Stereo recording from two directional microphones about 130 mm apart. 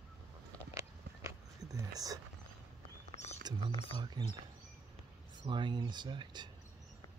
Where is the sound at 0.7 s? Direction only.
25° right (ahead or behind).